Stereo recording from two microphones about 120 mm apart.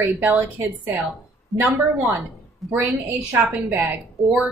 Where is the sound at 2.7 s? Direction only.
15° right (ahead or behind).